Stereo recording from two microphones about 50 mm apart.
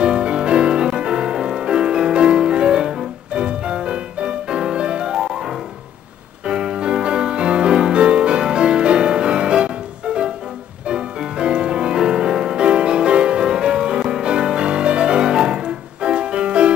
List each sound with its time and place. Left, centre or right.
0.0 s music: centre